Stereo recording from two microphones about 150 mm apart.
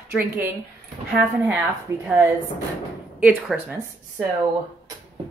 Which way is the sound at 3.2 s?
10° right (ahead or behind).